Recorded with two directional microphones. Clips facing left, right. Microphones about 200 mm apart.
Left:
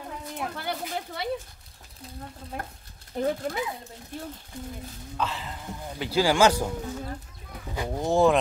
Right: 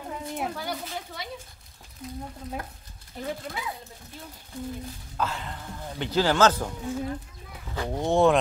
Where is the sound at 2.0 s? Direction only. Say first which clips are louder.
Right 6 dB; 30° left (ahead or behind).